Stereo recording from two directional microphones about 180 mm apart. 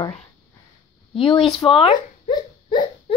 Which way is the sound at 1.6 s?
30° left (ahead or behind).